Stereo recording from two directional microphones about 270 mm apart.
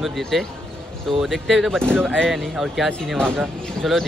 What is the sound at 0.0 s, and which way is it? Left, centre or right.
A man's voice, centre.